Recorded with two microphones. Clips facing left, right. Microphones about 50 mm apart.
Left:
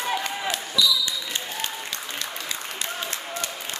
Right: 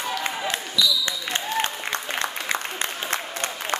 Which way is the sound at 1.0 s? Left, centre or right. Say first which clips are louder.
Right 3 dB; right.